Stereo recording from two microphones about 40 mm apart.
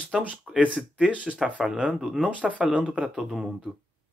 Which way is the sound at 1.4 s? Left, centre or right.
Centre.